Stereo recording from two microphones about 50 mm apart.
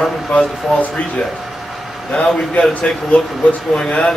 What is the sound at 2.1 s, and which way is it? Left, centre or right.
Speech, left.